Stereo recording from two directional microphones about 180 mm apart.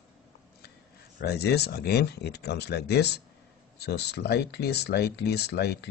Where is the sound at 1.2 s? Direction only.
65° left (ahead or behind).